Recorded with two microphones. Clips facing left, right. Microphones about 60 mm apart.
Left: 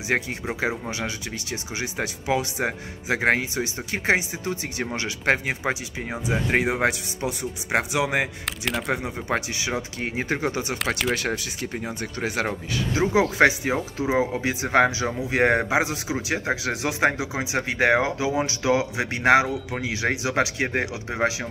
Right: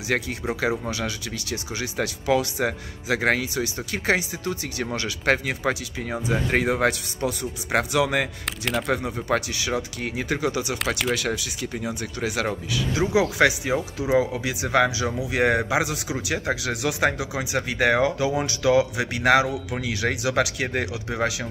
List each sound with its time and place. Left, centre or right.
0.1 s speech: left
8.5 s speech: centre
8.9 s speech: left